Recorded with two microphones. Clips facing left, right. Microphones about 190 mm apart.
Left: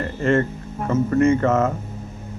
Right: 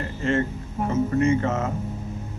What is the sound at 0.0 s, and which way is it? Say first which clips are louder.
Speech: left 4 dB; 55° left (ahead or behind).